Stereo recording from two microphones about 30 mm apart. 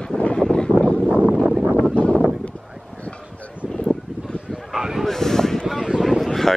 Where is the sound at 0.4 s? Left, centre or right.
Left.